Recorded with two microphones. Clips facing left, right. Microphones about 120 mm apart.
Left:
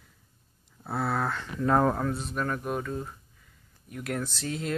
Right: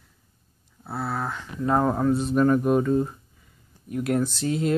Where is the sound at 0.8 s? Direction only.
5° right (ahead or behind).